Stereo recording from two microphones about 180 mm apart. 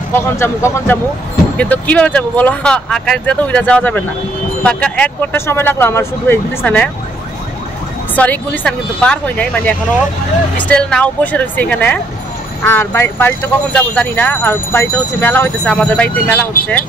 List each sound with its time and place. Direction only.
0.4 s speech: 15° left (ahead or behind)
8.2 s speech: 10° left (ahead or behind)